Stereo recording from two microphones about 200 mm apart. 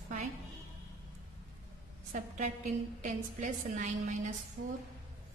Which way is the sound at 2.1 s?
40° right (ahead or behind).